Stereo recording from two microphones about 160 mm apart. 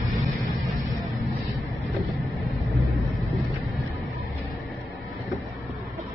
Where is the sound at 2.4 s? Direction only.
Centre (ahead or behind).